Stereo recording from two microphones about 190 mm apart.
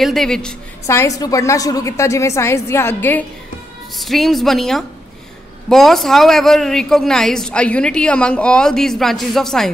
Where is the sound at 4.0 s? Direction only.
Centre (ahead or behind).